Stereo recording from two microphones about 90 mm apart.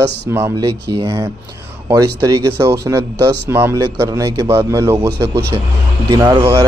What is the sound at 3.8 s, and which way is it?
Speech, 40° right (ahead or behind).